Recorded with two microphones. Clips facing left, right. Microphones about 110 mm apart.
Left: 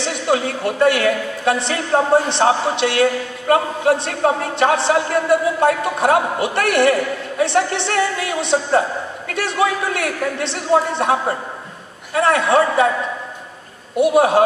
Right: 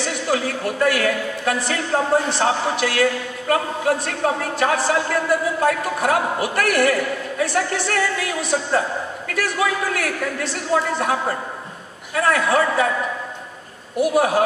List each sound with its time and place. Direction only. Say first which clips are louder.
0.0 s a woman's voice: left 3 dB; 25° left (ahead or behind)
13.9 s a woman's voice: left 4 dB; 25° left (ahead or behind)